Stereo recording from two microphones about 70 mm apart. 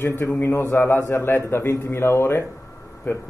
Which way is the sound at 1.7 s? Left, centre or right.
Left.